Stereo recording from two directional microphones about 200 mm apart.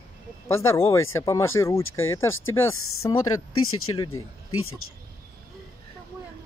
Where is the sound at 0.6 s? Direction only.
15° left (ahead or behind).